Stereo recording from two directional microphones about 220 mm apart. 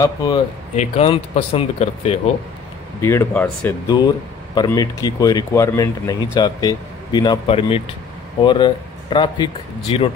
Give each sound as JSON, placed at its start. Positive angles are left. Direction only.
{"t": 0.0, "sound": "speech", "side_deg": 15}
{"t": 0.7, "sound": "speech", "side_deg": 25}
{"t": 3.0, "sound": "speech", "side_deg": 10}